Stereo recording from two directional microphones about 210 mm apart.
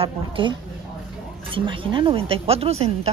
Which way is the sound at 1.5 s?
25° right (ahead or behind).